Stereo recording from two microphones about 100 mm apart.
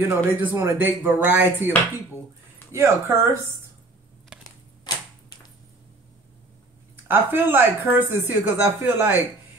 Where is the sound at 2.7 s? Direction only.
30° right (ahead or behind).